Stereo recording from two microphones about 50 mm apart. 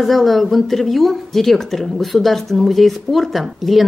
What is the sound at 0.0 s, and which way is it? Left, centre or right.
Speech, centre.